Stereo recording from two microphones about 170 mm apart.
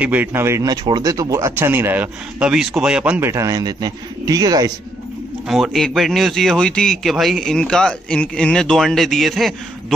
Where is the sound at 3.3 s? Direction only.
20° right (ahead or behind).